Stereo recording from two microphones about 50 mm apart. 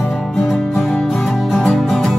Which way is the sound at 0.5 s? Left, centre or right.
Centre.